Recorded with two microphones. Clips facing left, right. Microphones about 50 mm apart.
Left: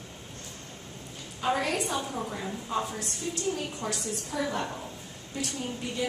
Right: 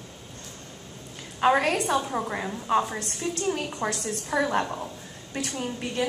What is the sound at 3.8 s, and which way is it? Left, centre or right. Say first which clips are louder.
Speech: right 6 dB; right.